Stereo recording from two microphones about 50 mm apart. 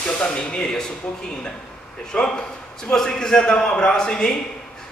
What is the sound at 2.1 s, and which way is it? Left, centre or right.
A man's voice, centre.